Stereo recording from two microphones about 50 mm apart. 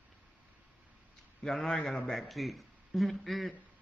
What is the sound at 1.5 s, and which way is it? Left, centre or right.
Speech, centre.